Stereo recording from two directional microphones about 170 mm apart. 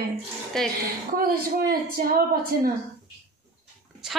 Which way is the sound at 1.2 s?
60° right (ahead or behind).